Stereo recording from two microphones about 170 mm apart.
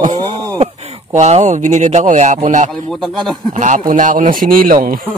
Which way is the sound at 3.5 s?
45° right (ahead or behind).